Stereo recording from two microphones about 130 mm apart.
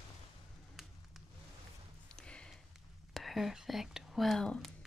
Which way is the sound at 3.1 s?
Centre (ahead or behind).